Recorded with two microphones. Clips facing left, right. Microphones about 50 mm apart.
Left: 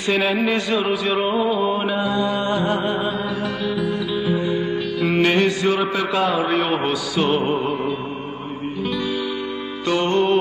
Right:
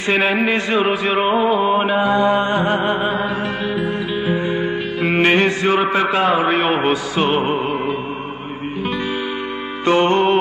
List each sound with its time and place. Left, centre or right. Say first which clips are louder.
0.1 s music: right 2 dB; right
9.8 s music: right 4 dB; right